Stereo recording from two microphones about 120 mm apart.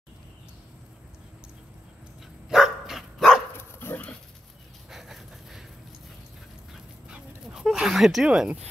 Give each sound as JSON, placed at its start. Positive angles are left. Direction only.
{"t": 2.5, "sound": "dog", "side_deg": -5}
{"t": 3.5, "sound": "dog", "side_deg": 20}
{"t": 4.8, "sound": "a sound", "side_deg": -5}
{"t": 7.1, "sound": "dog", "side_deg": -5}